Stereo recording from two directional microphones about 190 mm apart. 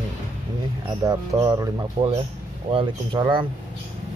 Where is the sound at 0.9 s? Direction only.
15° right (ahead or behind).